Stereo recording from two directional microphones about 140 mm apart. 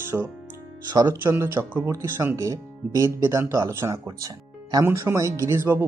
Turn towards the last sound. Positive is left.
turn(degrees=-20)  # may be behind; listen again after turning